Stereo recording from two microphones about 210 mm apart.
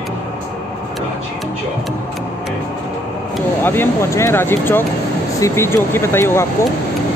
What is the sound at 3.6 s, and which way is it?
Speech, 10° left (ahead or behind).